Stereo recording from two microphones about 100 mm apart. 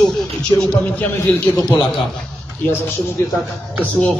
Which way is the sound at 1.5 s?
40° left (ahead or behind).